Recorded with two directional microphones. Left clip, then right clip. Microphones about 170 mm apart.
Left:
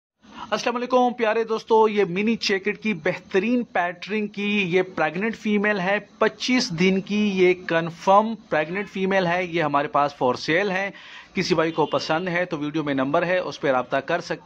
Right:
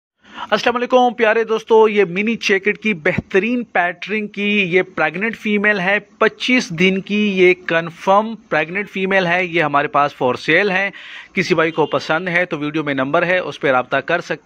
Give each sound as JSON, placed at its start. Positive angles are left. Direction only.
{"t": 0.4, "sound": "speech", "side_deg": -25}